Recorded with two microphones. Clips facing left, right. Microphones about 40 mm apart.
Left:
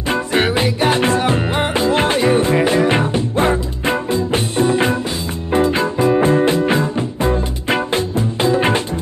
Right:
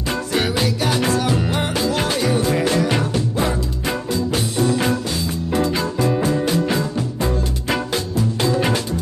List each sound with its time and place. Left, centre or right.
0.1 s music: left